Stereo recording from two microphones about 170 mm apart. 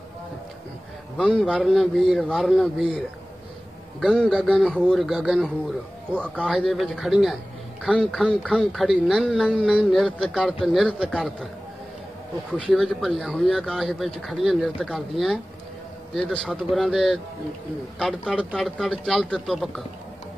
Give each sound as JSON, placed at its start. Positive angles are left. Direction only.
{"t": 1.1, "sound": "a man's voice", "side_deg": 0}
{"t": 4.0, "sound": "a man's voice", "side_deg": 5}
{"t": 12.4, "sound": "a man's voice", "side_deg": 5}